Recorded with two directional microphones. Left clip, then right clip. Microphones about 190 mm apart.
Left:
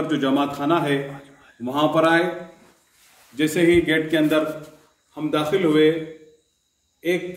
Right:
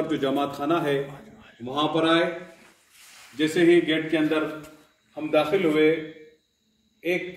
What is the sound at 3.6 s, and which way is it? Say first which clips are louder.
Speech: left 2 dB; 20° left (ahead or behind).